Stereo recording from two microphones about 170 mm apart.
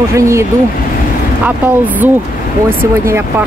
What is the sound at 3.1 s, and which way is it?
Speech, 15° right (ahead or behind).